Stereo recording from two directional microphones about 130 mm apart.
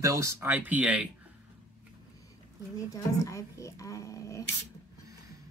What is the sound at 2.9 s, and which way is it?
A woman's voice, 25° left (ahead or behind).